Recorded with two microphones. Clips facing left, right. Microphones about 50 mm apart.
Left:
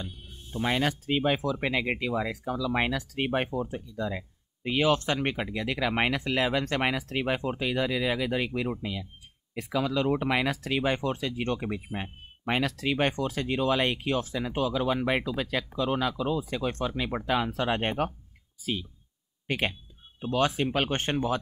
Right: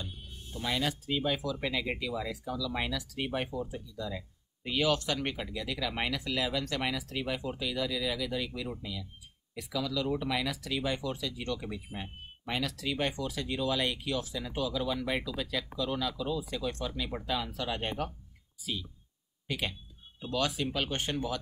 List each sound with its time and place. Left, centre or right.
0.0 s speech: left